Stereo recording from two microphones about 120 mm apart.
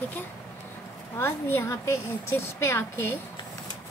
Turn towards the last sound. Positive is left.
turn(degrees=20)  # may be behind; listen again after turning